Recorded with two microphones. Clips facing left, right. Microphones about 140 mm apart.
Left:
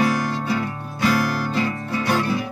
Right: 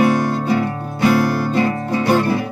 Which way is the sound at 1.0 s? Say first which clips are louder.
Right 5 dB; 50° right (ahead or behind).